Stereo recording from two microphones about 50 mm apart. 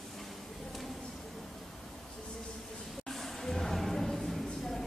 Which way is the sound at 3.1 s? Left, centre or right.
Centre.